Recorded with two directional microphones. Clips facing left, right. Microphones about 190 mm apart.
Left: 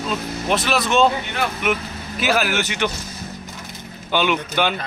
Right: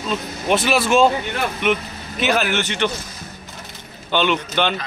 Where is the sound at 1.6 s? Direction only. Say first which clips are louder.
Right 2 dB; 5° left (ahead or behind).